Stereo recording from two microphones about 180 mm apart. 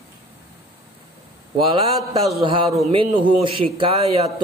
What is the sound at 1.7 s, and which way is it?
A man's voice, 30° right (ahead or behind).